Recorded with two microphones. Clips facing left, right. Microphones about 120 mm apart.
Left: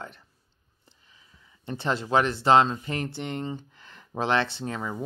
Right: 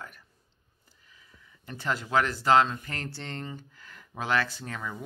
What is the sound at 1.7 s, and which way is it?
Speech, 25° left (ahead or behind).